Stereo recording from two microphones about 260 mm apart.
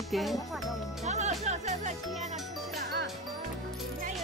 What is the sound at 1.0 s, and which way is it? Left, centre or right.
Music, right.